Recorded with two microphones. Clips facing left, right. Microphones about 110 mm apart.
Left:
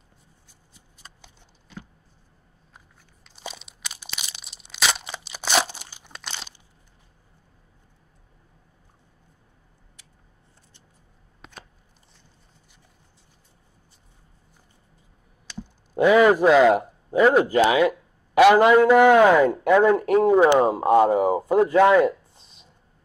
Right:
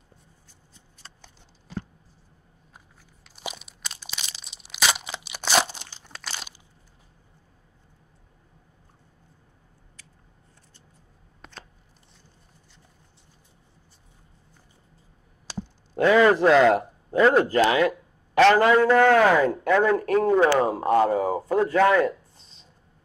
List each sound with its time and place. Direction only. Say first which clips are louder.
0.7 s shuffling cards: even; 10° left (ahead or behind)
3.3 s crunch: right 1 dB; 5° right (ahead or behind); by 6.1 s 10° left (ahead or behind)
6.2 s crunch: even; 5° right (ahead or behind)
15.9 s speech: left 2 dB; 15° left (ahead or behind)